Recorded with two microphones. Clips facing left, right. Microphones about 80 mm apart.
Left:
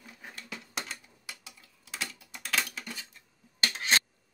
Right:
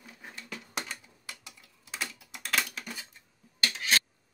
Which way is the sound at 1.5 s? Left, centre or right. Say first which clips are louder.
Right 1 dB; centre.